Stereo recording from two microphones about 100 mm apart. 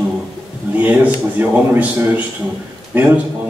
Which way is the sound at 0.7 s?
15° right (ahead or behind).